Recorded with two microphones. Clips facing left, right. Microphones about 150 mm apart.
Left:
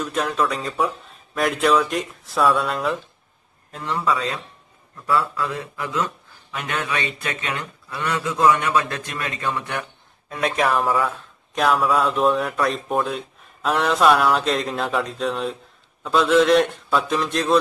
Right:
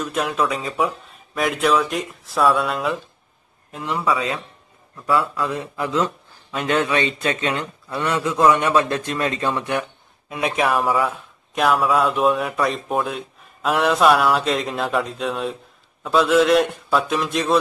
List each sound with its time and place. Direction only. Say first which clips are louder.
0.0 s speech: right 1 dB; centre (ahead or behind)
3.7 s speech: right 1 dB; 15° right (ahead or behind)
10.3 s speech: even; 5° right (ahead or behind)